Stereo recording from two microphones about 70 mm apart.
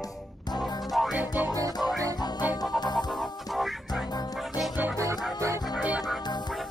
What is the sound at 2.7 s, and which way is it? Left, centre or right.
Music, left.